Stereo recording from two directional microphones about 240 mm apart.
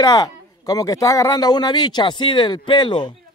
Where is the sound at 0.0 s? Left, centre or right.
Centre.